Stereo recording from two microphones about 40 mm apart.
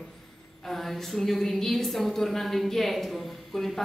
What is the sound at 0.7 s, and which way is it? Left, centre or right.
A woman's voice, centre.